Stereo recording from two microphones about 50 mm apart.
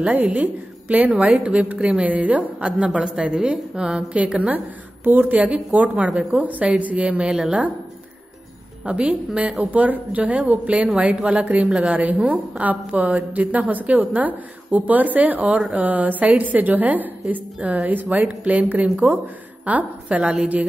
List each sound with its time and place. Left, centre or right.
0.1 s a woman's voice: right; by 4.2 s centre
4.2 s a woman's voice: right
8.8 s a woman's voice: right
9.7 s a woman's voice: right